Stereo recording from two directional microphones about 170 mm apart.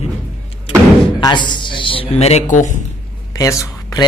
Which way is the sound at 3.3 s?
20° left (ahead or behind).